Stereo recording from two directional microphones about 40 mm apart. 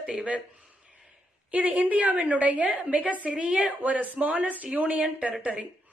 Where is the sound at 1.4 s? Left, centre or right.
Right.